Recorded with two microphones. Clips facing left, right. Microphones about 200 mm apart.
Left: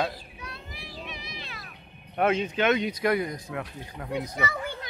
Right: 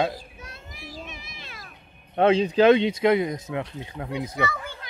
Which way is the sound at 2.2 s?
30° right (ahead or behind).